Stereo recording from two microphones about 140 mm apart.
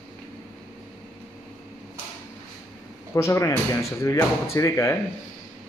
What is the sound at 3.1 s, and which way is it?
Speech, 20° left (ahead or behind).